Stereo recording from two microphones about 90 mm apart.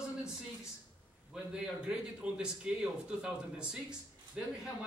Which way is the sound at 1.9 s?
10° right (ahead or behind).